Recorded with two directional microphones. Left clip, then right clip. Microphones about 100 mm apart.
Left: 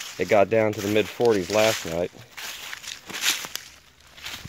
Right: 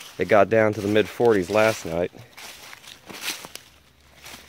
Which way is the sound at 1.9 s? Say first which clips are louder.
Right 1 dB; 15° right (ahead or behind).